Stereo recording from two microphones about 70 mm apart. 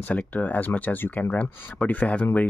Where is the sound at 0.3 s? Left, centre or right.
Left.